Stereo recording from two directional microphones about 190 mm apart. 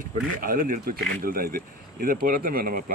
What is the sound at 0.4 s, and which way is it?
Speech, 45° right (ahead or behind).